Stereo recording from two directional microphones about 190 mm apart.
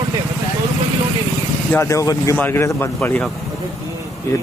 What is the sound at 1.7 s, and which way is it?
Speech, 15° left (ahead or behind).